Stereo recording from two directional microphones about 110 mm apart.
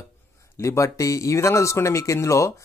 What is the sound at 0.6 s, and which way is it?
Speech, 25° left (ahead or behind).